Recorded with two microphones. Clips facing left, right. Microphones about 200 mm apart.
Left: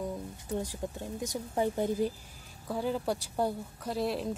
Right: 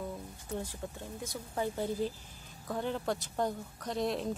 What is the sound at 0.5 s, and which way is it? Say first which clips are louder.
Speech: left 4 dB; 15° left (ahead or behind).